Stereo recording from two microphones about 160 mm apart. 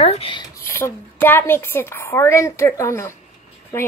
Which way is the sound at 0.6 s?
15° left (ahead or behind).